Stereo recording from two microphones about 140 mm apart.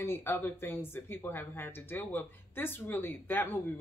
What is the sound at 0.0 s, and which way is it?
Speech, 15° left (ahead or behind).